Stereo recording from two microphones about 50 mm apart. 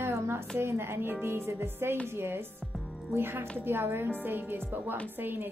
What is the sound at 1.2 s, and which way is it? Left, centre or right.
Music, right.